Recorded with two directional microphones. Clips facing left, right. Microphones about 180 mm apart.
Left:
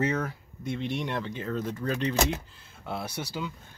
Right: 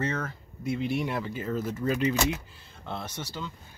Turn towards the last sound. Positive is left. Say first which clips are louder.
# left 3 dB
turn(degrees=10)  # may be behind; listen again after turning